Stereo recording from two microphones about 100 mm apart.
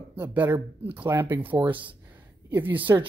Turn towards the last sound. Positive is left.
turn(degrees=-20)  # may be behind; listen again after turning